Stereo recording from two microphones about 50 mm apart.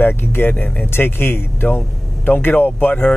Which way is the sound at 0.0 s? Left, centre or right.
Left.